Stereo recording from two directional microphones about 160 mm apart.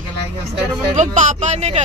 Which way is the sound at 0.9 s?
50° right (ahead or behind).